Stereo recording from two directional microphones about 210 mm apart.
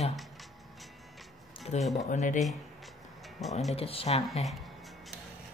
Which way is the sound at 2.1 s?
35° left (ahead or behind).